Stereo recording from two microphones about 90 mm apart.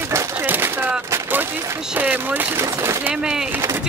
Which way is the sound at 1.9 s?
20° right (ahead or behind).